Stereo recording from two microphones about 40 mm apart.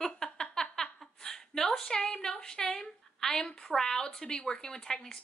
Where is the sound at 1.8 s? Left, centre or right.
Centre.